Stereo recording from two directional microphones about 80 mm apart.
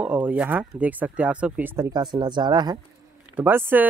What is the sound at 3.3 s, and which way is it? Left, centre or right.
Speech, right.